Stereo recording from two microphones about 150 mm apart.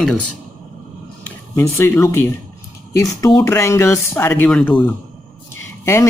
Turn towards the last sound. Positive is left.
turn(degrees=20)  # may be behind; listen again after turning